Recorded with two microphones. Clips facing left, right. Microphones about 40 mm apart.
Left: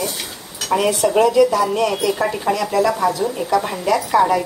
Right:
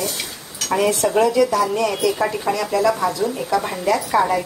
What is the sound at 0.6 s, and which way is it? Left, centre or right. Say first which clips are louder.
Speech: left 1 dB; centre.